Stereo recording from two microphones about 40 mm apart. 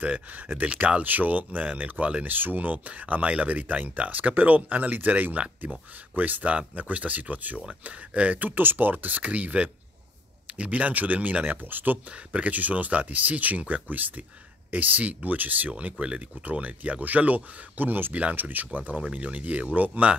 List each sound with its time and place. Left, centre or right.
0.0 s speech: right
11.6 s speech: right
12.3 s speech: right
15.8 s speech: right